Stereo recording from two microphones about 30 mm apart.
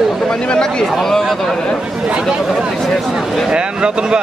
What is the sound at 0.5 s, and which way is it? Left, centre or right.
Speech, left.